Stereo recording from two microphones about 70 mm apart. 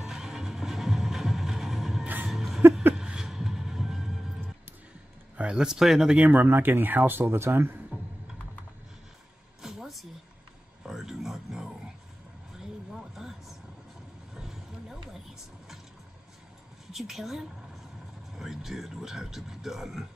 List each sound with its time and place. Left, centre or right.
0.0 s music: centre
2.2 s a sound: centre
3.0 s music: centre
5.4 s speech: centre
6.1 s speech: right
7.9 s computer keyboard: right
9.6 s a sound: centre
13.1 s a sound: centre
16.9 s a man's voice: centre